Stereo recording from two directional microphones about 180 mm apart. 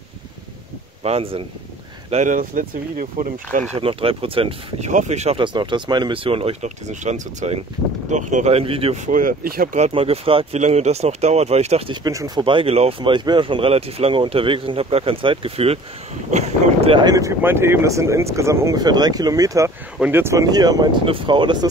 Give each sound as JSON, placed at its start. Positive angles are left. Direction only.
{"t": 1.0, "sound": "speech", "side_deg": -30}
{"t": 3.7, "sound": "speech", "side_deg": -30}
{"t": 9.8, "sound": "speech", "side_deg": -35}
{"t": 12.0, "sound": "speech", "side_deg": -20}